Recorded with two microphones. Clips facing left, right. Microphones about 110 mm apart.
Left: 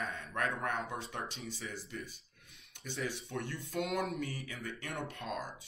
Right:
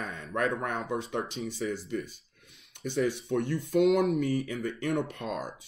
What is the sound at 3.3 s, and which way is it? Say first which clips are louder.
Speech: right 12 dB; 25° right (ahead or behind).